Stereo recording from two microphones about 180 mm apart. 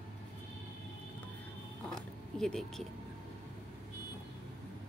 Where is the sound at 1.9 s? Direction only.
Centre (ahead or behind).